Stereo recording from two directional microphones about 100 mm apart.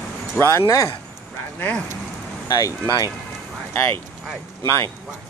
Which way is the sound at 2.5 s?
35° left (ahead or behind).